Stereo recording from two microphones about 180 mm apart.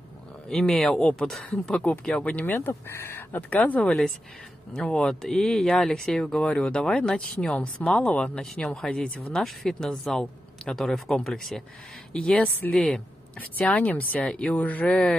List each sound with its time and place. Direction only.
0.5 s speech: 5° left (ahead or behind)